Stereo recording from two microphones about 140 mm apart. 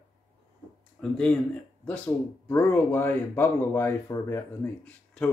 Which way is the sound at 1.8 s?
10° left (ahead or behind).